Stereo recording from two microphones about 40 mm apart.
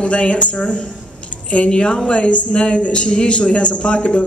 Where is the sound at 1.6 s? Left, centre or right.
Centre.